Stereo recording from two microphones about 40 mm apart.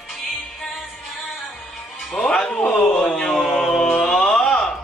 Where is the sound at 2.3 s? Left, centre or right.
Centre.